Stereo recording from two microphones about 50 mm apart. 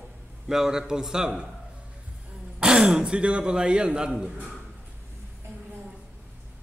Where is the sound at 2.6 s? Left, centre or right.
Centre.